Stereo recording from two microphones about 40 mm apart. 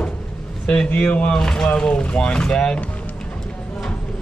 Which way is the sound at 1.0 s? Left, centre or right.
Left.